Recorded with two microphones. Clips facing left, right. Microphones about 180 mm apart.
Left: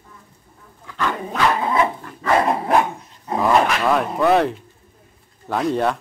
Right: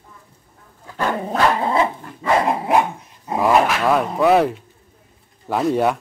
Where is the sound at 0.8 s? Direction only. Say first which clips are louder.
Right 2 dB; 40° right (ahead or behind).